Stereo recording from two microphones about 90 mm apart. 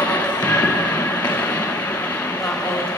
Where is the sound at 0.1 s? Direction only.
20° left (ahead or behind).